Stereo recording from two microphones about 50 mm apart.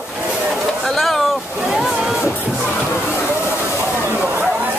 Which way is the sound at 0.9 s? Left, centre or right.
Centre.